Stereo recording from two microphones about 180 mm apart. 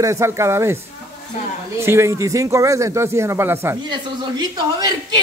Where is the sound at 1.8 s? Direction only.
15° right (ahead or behind).